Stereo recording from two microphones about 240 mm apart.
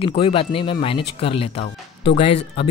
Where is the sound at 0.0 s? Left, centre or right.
Left.